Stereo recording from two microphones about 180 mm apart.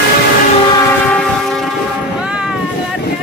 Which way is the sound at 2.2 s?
5° right (ahead or behind).